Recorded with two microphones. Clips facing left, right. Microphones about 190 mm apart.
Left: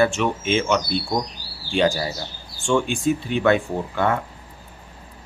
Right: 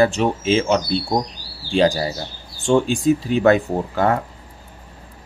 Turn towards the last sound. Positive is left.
turn(degrees=-40)  # may be behind; listen again after turning